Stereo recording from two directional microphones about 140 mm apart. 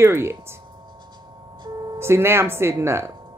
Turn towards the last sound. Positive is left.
turn(degrees=-20)  # may be behind; listen again after turning